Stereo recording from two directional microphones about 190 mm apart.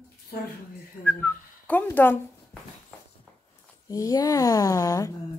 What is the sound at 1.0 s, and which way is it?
Speech, 5° left (ahead or behind).